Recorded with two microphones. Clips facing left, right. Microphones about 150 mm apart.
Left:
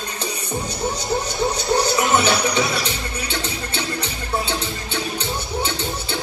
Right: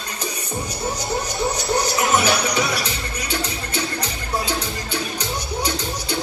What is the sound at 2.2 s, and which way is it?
Music, 30° left (ahead or behind).